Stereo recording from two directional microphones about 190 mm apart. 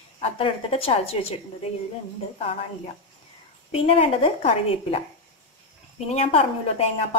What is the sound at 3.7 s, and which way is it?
A woman's voice, 30° left (ahead or behind).